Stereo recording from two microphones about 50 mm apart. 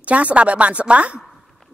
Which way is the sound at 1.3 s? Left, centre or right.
Centre.